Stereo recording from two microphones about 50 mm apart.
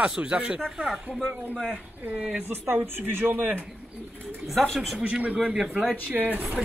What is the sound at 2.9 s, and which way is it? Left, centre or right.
Speech, right.